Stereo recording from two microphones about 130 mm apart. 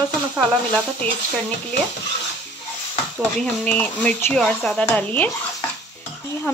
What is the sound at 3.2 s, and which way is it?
Speech, 10° left (ahead or behind).